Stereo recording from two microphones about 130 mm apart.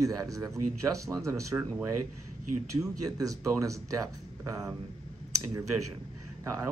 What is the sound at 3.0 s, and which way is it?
Speech, 30° right (ahead or behind).